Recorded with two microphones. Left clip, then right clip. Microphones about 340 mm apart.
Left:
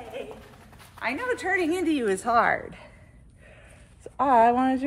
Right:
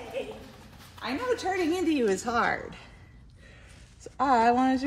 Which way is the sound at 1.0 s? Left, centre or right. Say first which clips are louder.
Left 2 dB; left.